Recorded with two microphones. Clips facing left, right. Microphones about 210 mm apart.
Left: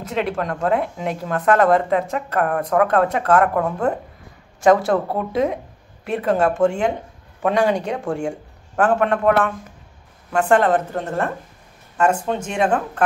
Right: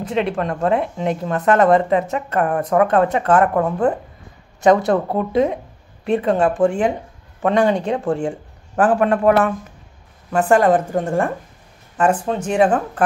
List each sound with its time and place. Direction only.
0.1 s a man's voice: centre (ahead or behind)
10.3 s a woman's voice: 10° right (ahead or behind)
12.5 s speech: 5° right (ahead or behind)